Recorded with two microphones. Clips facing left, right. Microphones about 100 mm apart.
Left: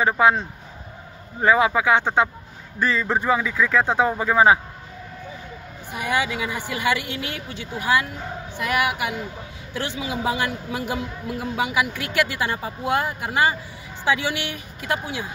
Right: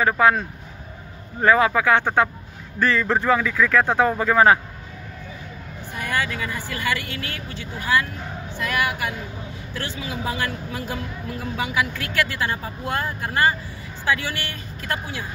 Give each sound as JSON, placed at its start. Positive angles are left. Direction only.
{"t": 0.0, "sound": "a man's voice", "side_deg": 20}
{"t": 5.9, "sound": "a man's voice", "side_deg": 15}